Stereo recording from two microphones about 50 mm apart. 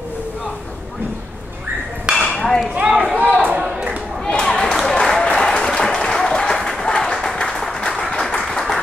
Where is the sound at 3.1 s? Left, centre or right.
Right.